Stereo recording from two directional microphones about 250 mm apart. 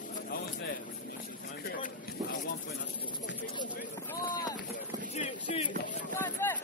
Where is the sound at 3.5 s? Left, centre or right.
Centre.